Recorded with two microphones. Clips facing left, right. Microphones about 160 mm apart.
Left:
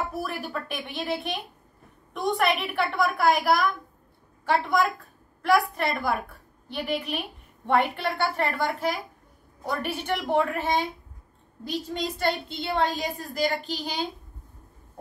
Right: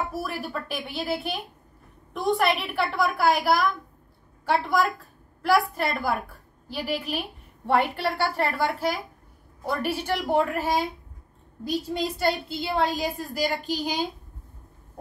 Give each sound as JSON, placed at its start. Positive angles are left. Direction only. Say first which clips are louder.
{"t": 0.1, "sound": "a woman's voice", "louder": "even", "side_deg": 0}
{"t": 13.7, "sound": "a woman's voice", "louder": "right 4 dB", "side_deg": -40}